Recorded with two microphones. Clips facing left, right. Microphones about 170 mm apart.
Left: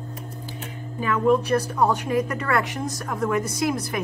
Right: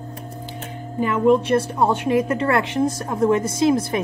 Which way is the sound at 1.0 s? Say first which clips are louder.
Right 3 dB; 25° right (ahead or behind).